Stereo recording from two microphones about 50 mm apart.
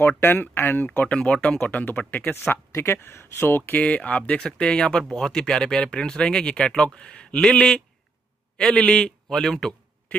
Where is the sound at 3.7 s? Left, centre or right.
Left.